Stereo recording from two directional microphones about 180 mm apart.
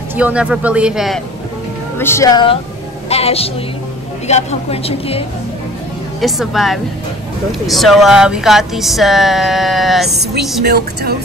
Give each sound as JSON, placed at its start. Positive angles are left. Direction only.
{"t": 0.1, "sound": "speech", "side_deg": -5}
{"t": 2.0, "sound": "a woman's voice", "side_deg": 15}
{"t": 6.2, "sound": "speech", "side_deg": 0}
{"t": 10.6, "sound": "a woman's voice", "side_deg": -65}